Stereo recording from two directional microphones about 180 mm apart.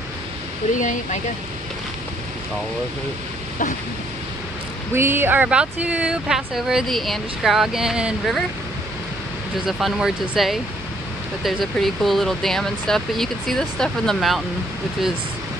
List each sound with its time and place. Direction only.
0.7 s speech: 45° left (ahead or behind)
4.9 s speech: 15° right (ahead or behind)
9.7 s speech: centre (ahead or behind)